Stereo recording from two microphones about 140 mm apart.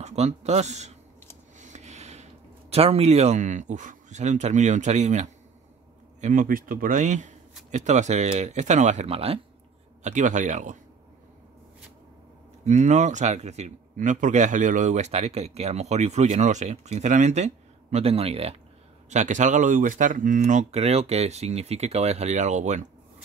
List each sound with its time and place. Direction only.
0.0 s speech: 50° right (ahead or behind)
1.6 s a sound: 55° right (ahead or behind)
2.7 s a man's voice: 45° right (ahead or behind)
6.2 s a man's voice: 70° right (ahead or behind); by 9.4 s 45° right (ahead or behind)
10.0 s a man's voice: 60° right (ahead or behind)
12.6 s a man's voice: 60° right (ahead or behind)
19.0 s a man's voice: 60° right (ahead or behind)